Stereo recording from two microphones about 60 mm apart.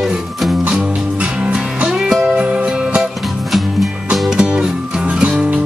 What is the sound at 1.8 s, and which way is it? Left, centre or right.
Music, centre.